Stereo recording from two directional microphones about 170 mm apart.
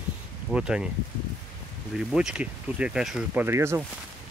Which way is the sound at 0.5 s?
5° right (ahead or behind).